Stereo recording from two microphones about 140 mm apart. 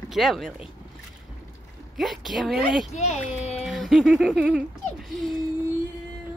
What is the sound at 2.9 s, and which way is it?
Speech, 50° left (ahead or behind).